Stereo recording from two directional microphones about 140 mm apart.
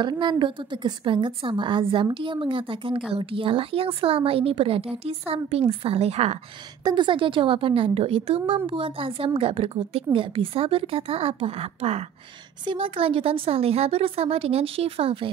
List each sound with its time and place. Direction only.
0.0 s a woman's voice: 35° right (ahead or behind)
6.8 s a woman's voice: 30° right (ahead or behind)